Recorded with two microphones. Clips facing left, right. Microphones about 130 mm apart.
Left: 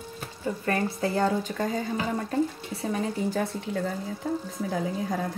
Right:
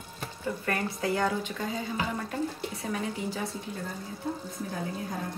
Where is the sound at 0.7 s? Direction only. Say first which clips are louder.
Left 3 dB; 30° left (ahead or behind).